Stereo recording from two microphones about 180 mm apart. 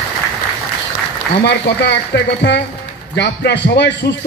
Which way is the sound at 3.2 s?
70° left (ahead or behind).